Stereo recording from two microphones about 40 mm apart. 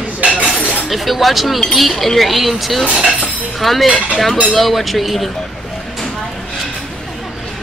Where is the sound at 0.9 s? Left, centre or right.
Centre.